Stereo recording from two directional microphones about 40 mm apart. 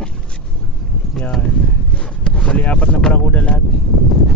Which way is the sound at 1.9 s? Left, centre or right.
Left.